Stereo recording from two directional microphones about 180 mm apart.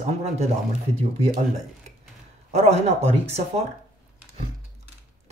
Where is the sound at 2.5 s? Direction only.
35° right (ahead or behind).